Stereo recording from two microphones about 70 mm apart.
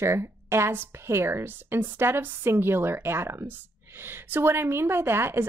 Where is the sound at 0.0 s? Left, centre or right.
Right.